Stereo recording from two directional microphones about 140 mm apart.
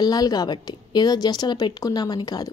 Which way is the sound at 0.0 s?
30° left (ahead or behind).